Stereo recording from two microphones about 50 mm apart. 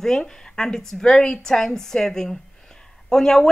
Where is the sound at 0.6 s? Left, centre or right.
Centre.